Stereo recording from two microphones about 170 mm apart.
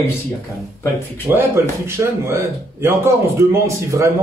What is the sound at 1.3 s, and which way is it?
Speech, 15° right (ahead or behind).